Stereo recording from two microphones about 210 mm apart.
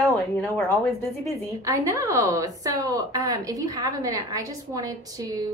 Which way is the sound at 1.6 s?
15° right (ahead or behind).